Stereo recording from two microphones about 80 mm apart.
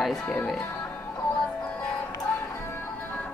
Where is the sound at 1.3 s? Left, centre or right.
Centre.